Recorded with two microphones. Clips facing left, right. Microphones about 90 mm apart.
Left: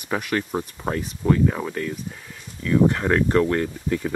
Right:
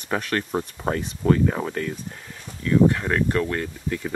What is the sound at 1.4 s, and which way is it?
Speech, 10° right (ahead or behind).